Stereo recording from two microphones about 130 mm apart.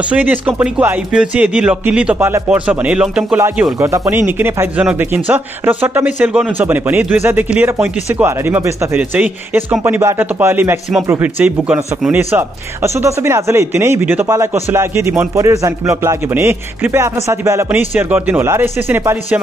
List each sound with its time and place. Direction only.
0.1 s speech: 15° right (ahead or behind)
3.3 s a man's voice: 20° right (ahead or behind)